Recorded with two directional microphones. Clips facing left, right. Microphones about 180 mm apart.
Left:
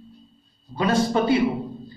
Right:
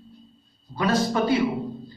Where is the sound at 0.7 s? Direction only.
25° left (ahead or behind).